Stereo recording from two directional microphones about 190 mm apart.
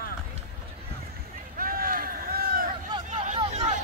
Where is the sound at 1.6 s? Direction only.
50° right (ahead or behind).